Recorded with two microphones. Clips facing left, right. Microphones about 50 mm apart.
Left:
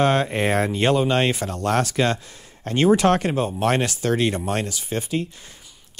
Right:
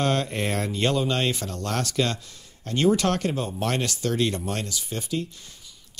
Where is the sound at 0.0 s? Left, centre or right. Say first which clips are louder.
Left 5 dB; left.